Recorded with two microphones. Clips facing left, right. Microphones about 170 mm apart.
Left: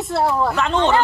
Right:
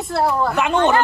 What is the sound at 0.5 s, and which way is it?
Speech, 15° right (ahead or behind).